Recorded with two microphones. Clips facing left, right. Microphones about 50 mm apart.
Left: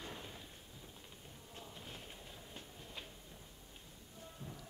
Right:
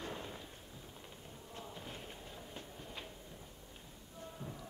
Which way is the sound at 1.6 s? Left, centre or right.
Centre.